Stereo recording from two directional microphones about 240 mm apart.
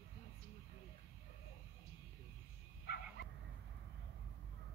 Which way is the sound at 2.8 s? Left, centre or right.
Left.